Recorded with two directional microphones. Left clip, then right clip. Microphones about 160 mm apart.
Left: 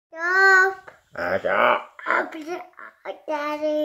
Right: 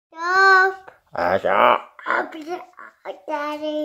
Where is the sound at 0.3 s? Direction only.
45° right (ahead or behind).